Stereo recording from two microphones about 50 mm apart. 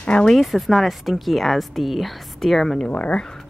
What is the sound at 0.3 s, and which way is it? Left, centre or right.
Speech, centre.